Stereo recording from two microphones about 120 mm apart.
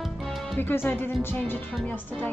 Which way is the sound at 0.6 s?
15° left (ahead or behind).